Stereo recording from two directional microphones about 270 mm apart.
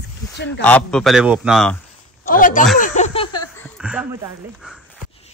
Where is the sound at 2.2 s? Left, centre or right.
Left.